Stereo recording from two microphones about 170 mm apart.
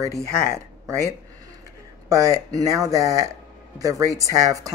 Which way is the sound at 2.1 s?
20° right (ahead or behind).